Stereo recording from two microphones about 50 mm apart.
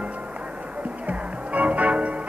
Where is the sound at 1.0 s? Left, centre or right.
Right.